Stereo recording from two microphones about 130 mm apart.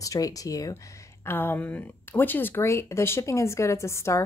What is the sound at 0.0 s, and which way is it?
Speech, 25° left (ahead or behind).